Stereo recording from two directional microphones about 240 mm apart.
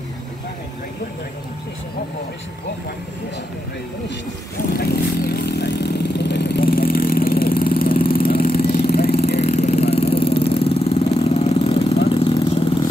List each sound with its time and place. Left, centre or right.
4.7 s vehicle: left
9.4 s vehicle: left